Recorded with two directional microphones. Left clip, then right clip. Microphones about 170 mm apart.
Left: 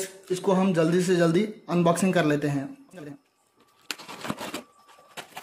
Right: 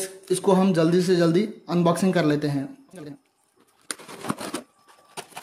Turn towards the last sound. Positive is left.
turn(degrees=-5)  # may be behind; listen again after turning